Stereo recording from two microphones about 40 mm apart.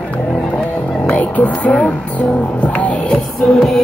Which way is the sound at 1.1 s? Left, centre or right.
Left.